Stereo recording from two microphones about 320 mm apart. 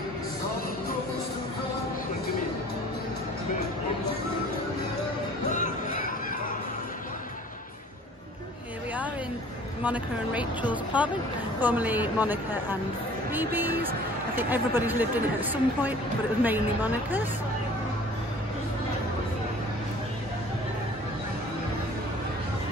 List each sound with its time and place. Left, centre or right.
5.5 s music: left
9.8 s speech: centre